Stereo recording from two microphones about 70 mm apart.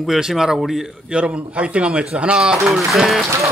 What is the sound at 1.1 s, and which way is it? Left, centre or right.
Speech, centre.